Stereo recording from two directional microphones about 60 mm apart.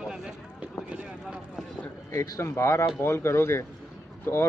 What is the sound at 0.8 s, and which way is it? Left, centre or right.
Vehicle, centre.